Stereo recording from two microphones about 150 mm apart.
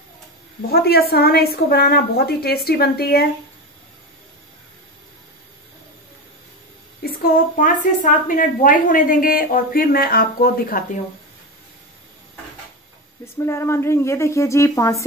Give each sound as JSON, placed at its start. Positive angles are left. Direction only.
{"t": 0.6, "sound": "a woman's voice", "side_deg": 90}
{"t": 7.0, "sound": "a woman's voice", "side_deg": 75}
{"t": 13.2, "sound": "speech", "side_deg": 15}